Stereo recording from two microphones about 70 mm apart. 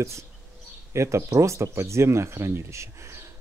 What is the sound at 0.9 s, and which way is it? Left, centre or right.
Speech, right.